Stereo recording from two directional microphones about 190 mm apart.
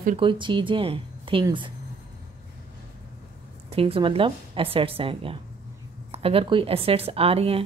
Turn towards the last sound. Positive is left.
turn(degrees=-30)  # may be behind; listen again after turning